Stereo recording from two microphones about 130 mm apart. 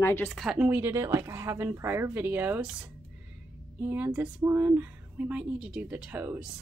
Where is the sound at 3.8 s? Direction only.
15° right (ahead or behind).